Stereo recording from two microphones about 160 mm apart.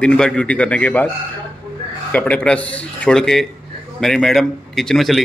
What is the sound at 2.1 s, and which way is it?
A man's voice, 10° left (ahead or behind).